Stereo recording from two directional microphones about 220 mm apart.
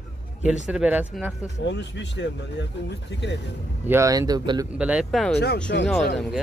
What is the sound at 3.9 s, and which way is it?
Speech, 15° right (ahead or behind).